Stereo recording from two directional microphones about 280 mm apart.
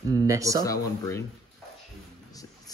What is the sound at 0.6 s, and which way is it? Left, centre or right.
Speech, centre.